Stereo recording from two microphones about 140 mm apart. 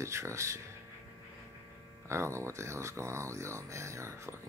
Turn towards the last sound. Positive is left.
turn(degrees=-20)  # may be behind; listen again after turning